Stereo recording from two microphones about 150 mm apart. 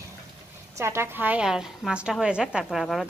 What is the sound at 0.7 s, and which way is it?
A woman's voice, 15° right (ahead or behind).